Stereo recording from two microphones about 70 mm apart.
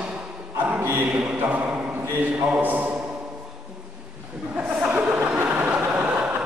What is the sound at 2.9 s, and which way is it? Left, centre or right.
Music, right.